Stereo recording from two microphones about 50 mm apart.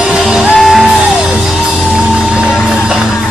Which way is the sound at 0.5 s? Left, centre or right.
Centre.